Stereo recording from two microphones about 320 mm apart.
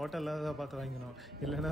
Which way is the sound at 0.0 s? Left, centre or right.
Centre.